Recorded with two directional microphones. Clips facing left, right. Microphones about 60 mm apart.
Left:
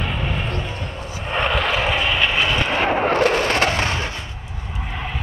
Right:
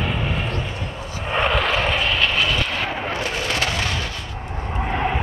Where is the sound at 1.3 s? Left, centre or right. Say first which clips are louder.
Even; centre; by 2.9 s left.